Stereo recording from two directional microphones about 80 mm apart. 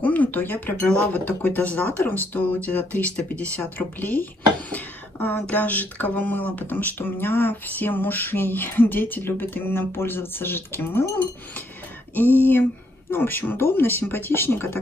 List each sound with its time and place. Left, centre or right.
0.0 s speech: centre
12.2 s speech: left